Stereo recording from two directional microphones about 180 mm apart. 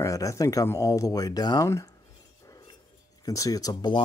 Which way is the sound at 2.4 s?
20° left (ahead or behind).